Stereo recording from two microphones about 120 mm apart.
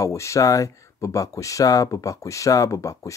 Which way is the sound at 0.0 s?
25° left (ahead or behind).